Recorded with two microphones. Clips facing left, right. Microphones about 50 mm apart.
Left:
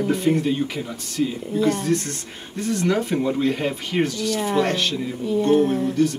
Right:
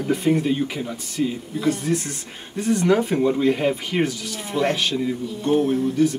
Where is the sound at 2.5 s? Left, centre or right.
Centre.